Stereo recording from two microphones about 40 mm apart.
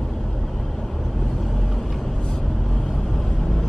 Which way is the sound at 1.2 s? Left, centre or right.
Centre.